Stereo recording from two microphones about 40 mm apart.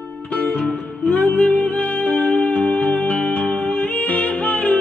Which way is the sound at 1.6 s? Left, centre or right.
Left.